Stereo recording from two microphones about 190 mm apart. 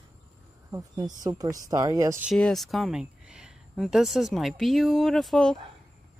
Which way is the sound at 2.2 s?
5° left (ahead or behind).